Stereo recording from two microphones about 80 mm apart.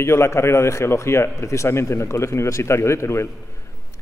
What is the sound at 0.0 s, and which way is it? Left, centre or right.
A man's voice, left.